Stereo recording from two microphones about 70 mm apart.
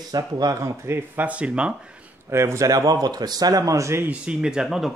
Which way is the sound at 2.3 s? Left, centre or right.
Right.